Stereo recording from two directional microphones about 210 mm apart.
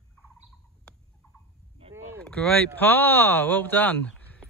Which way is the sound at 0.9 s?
5° left (ahead or behind).